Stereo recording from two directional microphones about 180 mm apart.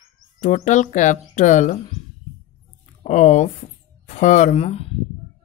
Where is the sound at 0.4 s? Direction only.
40° left (ahead or behind).